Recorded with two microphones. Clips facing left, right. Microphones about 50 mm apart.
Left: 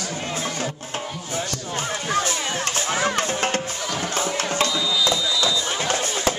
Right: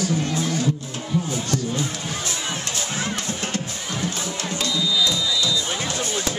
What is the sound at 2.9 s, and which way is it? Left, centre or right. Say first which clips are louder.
Music: left 7 dB; left.